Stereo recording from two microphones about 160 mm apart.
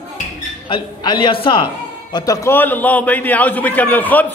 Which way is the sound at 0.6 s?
30° left (ahead or behind).